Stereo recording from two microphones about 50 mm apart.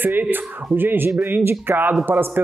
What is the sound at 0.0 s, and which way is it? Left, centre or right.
Speech, right.